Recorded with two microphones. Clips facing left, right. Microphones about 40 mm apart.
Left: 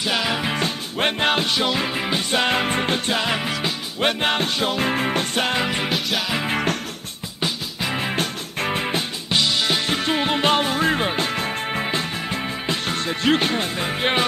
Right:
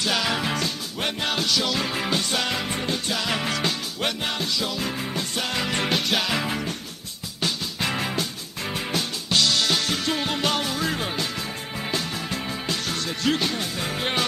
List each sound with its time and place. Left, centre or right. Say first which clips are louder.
0.0 s music: left 2 dB; centre
0.6 s music: left 5 dB; left
2.4 s music: left 6 dB; left
3.3 s music: left 2 dB; centre
4.0 s music: left 8 dB; left
5.7 s music: left 1 dB; centre
6.5 s music: left 7 dB; left
7.4 s music: left 1 dB; centre
8.2 s music: left 5 dB; left
11.8 s music: left 4 dB; left
13.8 s music: left 4 dB; left